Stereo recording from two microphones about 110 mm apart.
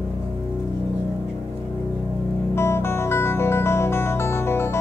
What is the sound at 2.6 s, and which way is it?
Music, 20° left (ahead or behind).